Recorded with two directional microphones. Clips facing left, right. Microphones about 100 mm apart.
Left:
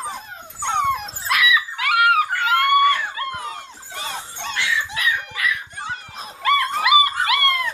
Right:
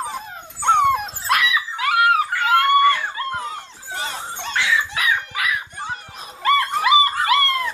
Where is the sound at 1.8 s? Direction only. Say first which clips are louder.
Right 1 dB; 25° right (ahead or behind).